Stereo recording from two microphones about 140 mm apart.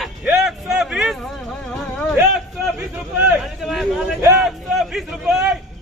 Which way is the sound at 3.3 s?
Centre (ahead or behind).